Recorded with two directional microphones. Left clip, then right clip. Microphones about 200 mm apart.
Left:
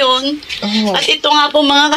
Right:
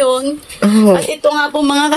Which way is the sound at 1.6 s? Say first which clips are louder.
Left 3 dB; 40° right (ahead or behind).